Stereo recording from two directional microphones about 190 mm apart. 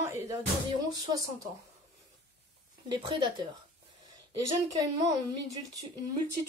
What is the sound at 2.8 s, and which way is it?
Speech, 25° right (ahead or behind).